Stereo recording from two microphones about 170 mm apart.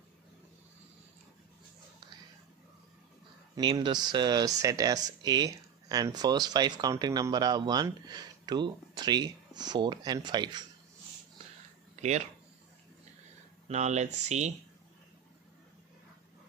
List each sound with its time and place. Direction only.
3.5 s speech: 25° right (ahead or behind)
12.0 s speech: 40° right (ahead or behind)
13.7 s speech: 40° right (ahead or behind)